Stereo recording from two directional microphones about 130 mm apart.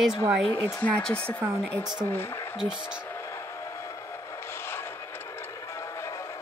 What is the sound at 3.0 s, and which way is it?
Train, 15° left (ahead or behind).